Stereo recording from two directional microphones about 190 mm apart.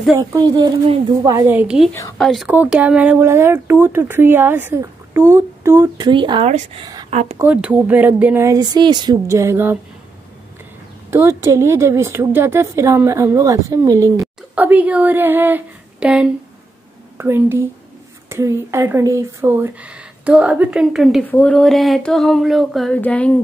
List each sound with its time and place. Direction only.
0.1 s a woman's voice: 20° right (ahead or behind)
7.1 s speech: 35° right (ahead or behind)
7.3 s speech: 10° right (ahead or behind)
11.1 s speech: 15° right (ahead or behind)
21.3 s a sound: 10° left (ahead or behind)